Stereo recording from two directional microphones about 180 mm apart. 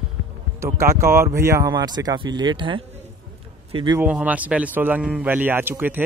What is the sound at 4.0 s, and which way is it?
Speech, 5° right (ahead or behind).